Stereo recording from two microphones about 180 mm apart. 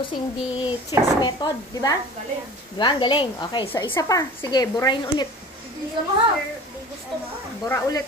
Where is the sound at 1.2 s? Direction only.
20° left (ahead or behind).